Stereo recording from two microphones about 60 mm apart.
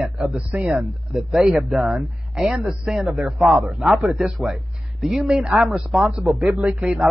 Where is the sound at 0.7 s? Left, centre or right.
Centre.